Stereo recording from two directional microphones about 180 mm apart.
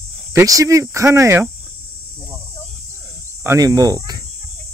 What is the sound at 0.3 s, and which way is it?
Cricket, 20° right (ahead or behind).